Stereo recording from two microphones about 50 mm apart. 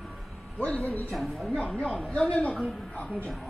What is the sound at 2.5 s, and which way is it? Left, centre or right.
Speech, centre.